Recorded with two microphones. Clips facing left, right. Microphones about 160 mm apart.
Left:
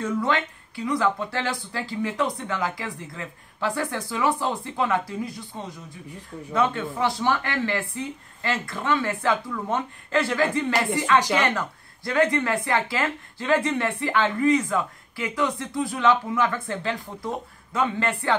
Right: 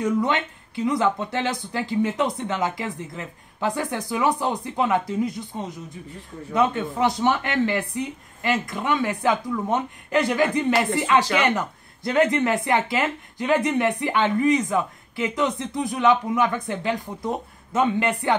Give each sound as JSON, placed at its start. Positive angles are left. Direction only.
{"t": 0.0, "sound": "speech", "side_deg": -20}